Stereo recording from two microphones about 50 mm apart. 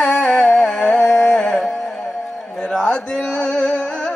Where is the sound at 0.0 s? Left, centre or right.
Centre.